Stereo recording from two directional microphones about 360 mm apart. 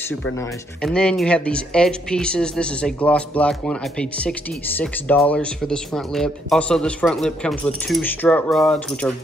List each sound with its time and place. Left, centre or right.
0.8 s speech: centre